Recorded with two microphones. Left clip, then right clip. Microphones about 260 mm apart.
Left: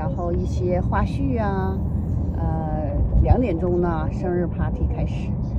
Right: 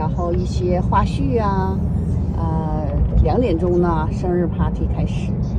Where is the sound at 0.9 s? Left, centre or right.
Right.